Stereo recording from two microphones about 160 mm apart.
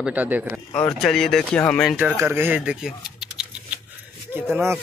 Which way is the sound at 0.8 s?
Centre (ahead or behind).